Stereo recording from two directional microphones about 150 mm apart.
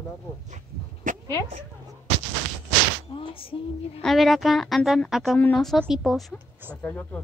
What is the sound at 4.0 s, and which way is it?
Speech, centre (ahead or behind).